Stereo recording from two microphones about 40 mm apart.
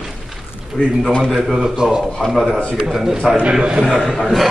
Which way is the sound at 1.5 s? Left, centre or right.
Centre.